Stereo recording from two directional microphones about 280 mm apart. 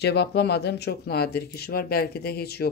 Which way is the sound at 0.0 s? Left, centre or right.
Left.